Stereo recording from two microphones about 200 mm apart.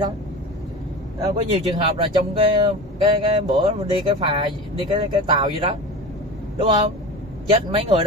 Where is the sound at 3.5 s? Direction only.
25° right (ahead or behind).